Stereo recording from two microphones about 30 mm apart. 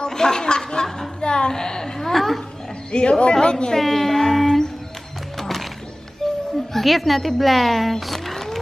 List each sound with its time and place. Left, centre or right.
0.0 s speech: left
1.2 s a sound: left
1.5 s a sound: left
2.0 s a sound: centre
2.9 s a man's voice: left
3.7 s speech: centre
5.4 s music: centre
6.2 s children playing: centre
6.7 s speech: centre